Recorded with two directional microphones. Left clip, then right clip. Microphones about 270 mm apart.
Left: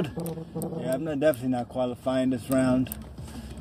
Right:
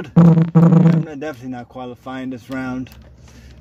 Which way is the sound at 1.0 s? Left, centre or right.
Centre.